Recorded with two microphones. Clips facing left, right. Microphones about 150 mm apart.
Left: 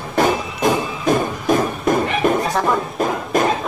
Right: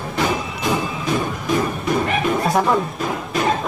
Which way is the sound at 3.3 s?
45° left (ahead or behind).